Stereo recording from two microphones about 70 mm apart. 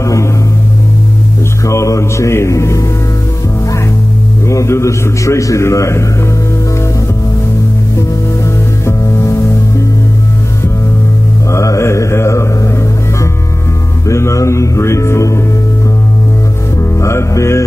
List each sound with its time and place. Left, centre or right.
0.0 s music: left
1.7 s a man's voice: left
4.5 s a man's voice: left
8.8 s music: left
11.5 s mantra: left
14.0 s a man's voice: left
17.0 s a man's voice: left